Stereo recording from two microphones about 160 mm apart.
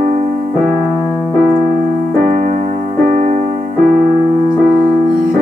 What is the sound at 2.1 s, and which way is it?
Music, 55° right (ahead or behind).